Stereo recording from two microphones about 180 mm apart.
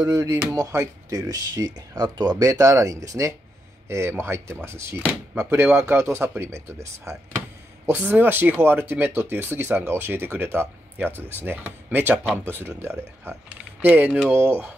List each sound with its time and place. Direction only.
0.0 s speech: 20° right (ahead or behind)